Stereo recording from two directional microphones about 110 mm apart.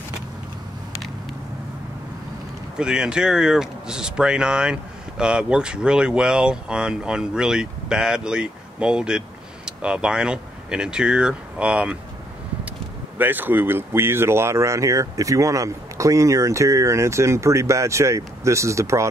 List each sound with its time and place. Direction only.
2.8 s speech: 5° right (ahead or behind)
13.2 s speech: 15° right (ahead or behind)